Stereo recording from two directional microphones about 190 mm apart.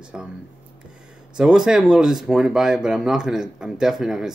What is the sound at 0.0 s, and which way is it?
Speech, 5° right (ahead or behind).